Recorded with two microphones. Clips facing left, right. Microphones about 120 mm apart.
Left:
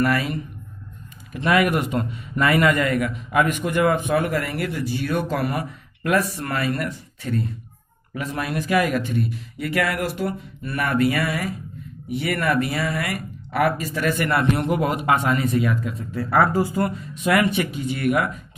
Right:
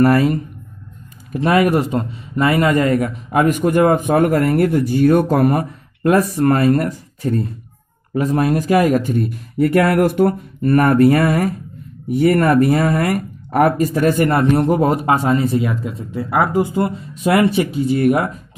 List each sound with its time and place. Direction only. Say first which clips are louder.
0.0 s speech: right 8 dB; 40° right (ahead or behind)